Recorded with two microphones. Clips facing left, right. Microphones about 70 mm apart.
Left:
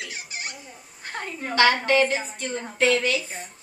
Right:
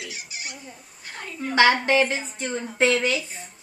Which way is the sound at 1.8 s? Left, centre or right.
Right.